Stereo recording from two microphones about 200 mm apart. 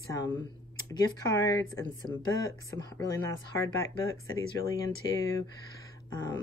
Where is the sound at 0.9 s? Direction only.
15° left (ahead or behind).